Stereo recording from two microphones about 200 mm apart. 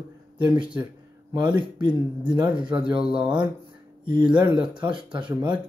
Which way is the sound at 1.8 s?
20° right (ahead or behind).